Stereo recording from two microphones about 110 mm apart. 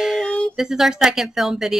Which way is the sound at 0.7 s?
5° right (ahead or behind).